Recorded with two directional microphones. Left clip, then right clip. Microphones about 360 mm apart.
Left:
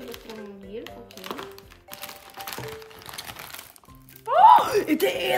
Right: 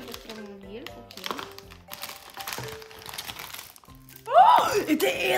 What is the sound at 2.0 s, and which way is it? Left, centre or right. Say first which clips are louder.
Crack: even; centre.